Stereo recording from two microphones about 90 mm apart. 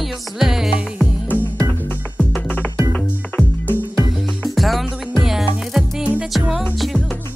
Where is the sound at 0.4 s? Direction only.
5° right (ahead or behind).